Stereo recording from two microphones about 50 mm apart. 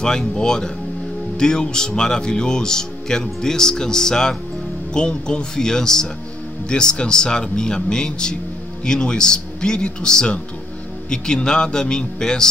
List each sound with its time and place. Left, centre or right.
0.0 s speech: centre